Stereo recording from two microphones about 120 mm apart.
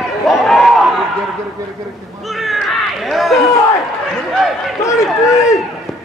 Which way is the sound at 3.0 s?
Centre (ahead or behind).